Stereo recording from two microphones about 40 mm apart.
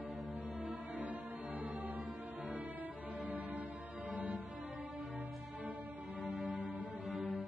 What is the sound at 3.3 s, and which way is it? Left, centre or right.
Music, right.